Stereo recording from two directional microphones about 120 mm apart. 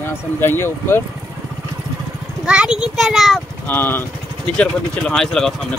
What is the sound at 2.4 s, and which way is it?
Speech, 10° right (ahead or behind).